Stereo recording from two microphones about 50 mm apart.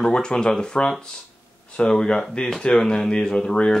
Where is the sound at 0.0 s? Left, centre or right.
Centre.